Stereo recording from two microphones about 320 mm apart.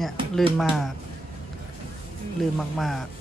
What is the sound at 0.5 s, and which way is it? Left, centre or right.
Speech, centre.